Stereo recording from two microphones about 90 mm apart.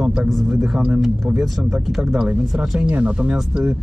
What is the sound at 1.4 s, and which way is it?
Speech, 5° right (ahead or behind).